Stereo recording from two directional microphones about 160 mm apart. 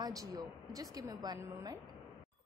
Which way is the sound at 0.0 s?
20° right (ahead or behind).